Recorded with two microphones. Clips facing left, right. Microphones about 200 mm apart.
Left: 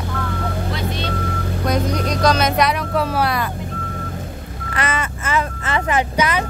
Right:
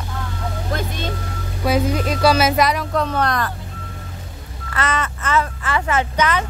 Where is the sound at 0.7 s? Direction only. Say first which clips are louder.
Left 1 dB; 45° right (ahead or behind).